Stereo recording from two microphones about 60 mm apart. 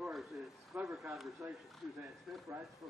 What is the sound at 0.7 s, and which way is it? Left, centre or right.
Speech, right.